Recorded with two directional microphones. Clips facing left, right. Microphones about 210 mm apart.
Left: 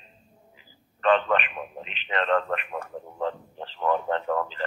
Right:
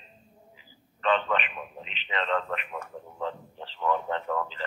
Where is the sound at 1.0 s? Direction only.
50° left (ahead or behind).